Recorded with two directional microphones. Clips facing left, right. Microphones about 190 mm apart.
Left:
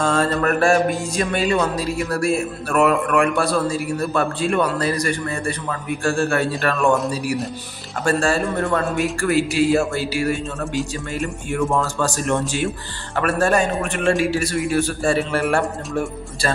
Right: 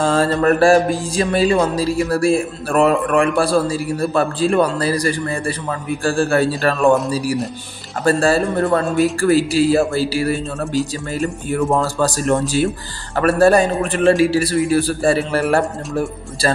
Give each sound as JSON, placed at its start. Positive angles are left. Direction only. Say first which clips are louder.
{"t": 0.0, "sound": "music", "louder": "right 4 dB", "side_deg": -30}
{"t": 8.0, "sound": "music", "louder": "right 4 dB", "side_deg": -35}